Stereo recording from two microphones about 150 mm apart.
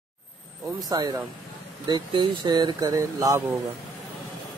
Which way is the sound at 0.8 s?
25° right (ahead or behind).